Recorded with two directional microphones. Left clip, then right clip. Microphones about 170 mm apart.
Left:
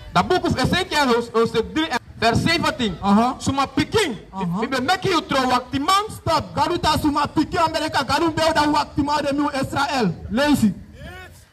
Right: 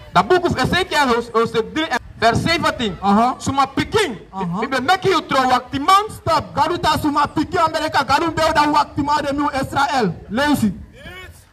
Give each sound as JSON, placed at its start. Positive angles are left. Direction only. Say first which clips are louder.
{"t": 0.1, "sound": "a man's voice", "louder": "right 4 dB", "side_deg": -20}